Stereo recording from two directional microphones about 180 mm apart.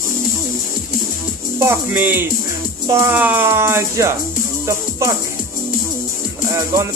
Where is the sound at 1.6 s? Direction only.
10° right (ahead or behind).